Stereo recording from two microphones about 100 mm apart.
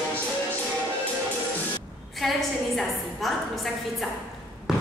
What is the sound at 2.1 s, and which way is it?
A woman's voice, centre (ahead or behind).